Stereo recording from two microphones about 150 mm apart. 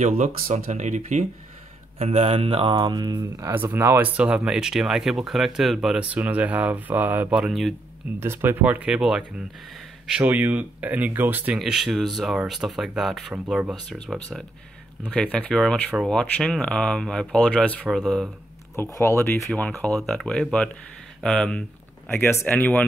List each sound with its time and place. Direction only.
0.0 s speech: 50° right (ahead or behind); by 7.7 s 5° right (ahead or behind)
8.2 s speech: 15° right (ahead or behind)
13.8 s speech: 5° left (ahead or behind)
18.8 s speech: 20° left (ahead or behind)